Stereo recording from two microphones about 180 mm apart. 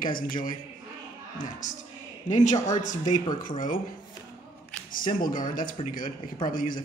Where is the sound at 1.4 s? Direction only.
45° left (ahead or behind).